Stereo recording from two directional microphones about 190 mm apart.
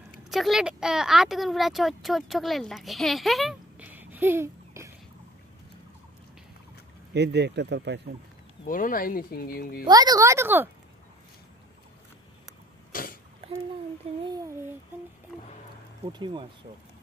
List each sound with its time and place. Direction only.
0.3 s speech: centre (ahead or behind)
7.2 s speech: 60° right (ahead or behind)
8.6 s speech: 45° left (ahead or behind)
9.8 s speech: 20° right (ahead or behind)
12.9 s sneeze: 50° left (ahead or behind)
14.2 s speech: 20° right (ahead or behind)
16.1 s speech: 25° right (ahead or behind)